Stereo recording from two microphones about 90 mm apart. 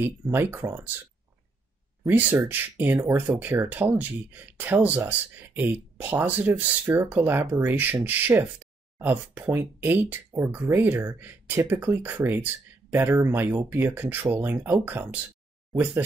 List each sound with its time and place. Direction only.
0.0 s speech: 20° right (ahead or behind)
2.0 s speech: 20° right (ahead or behind)